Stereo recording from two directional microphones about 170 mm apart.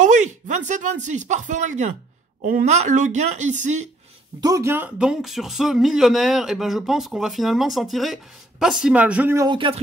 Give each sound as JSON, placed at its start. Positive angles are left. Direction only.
{"t": 0.0, "sound": "speech", "side_deg": -45}
{"t": 4.4, "sound": "speech", "side_deg": -20}
{"t": 9.5, "sound": "speech", "side_deg": -30}